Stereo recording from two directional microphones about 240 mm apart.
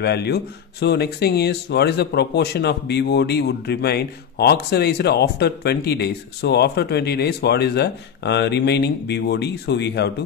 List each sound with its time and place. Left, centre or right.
0.0 s speech: left